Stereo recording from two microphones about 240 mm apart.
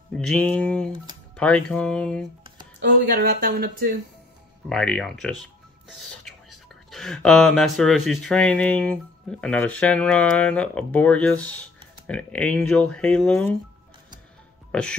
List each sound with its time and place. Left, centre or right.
0.1 s speech: centre
3.2 s speech: right
4.6 s speech: centre
14.7 s speech: centre